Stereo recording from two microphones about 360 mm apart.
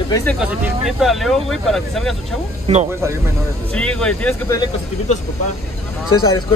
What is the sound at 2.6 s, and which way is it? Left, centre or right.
Speech, centre.